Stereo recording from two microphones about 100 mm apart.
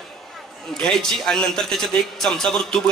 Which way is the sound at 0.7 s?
5° left (ahead or behind).